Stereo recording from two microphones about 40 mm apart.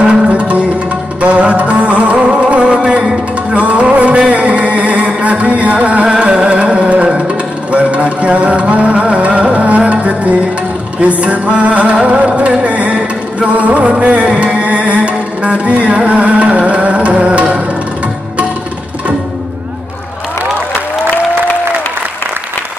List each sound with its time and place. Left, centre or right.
0.3 s music: right